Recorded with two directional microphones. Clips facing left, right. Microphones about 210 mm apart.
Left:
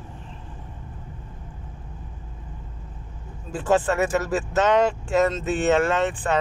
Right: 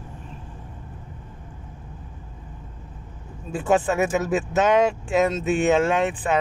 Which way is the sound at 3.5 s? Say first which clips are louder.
Even; 5° right (ahead or behind).